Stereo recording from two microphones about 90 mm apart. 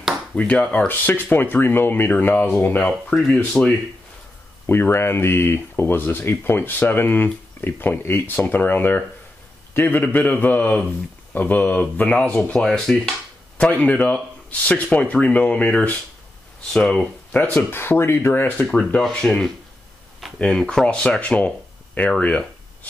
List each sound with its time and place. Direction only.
0.4 s speech: 15° left (ahead or behind)
2.8 s speech: 5° left (ahead or behind)
3.6 s speech: 15° left (ahead or behind)
4.6 s speech: 25° left (ahead or behind); by 13.1 s 5° left (ahead or behind)
13.6 s speech: 15° left (ahead or behind)
17.6 s speech: 25° left (ahead or behind)
18.7 s speech: 10° left (ahead or behind)